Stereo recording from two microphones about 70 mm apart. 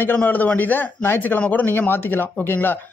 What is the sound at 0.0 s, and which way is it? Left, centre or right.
Speech, left.